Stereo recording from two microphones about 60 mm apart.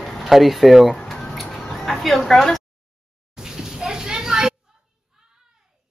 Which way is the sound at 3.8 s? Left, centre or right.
Centre.